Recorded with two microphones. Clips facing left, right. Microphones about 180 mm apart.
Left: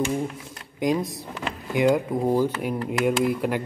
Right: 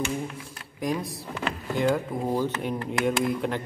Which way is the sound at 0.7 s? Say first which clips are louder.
Left 5 dB; 20° left (ahead or behind).